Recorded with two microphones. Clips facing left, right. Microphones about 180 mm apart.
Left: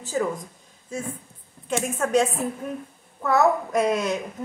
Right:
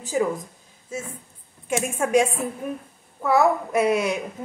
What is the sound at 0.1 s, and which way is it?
Speech, 15° right (ahead or behind).